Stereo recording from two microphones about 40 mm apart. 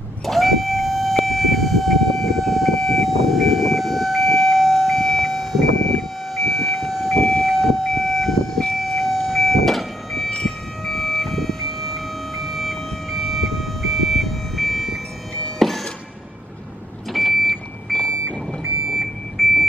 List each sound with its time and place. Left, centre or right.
0.2 s vehicle: centre
7.2 s vehicle: centre
7.4 s train: centre
8.7 s vehicle: centre
10.4 s a sound: centre
17.1 s vehicle: centre
18.9 s a sound: centre